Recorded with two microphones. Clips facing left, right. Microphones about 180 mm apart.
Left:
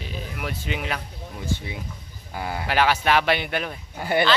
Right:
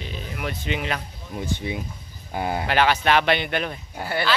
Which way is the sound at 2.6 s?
5° left (ahead or behind).